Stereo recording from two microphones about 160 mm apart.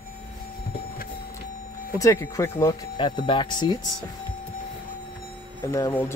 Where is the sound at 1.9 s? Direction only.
20° left (ahead or behind).